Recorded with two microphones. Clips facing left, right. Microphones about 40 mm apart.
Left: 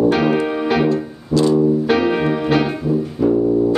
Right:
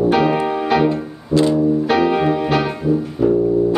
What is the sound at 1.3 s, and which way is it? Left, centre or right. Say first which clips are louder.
Music: even; right.